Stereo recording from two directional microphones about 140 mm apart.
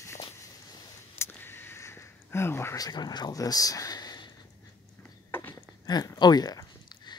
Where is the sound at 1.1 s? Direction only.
15° left (ahead or behind).